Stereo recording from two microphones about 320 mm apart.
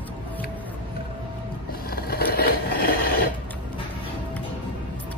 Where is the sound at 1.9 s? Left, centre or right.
Left.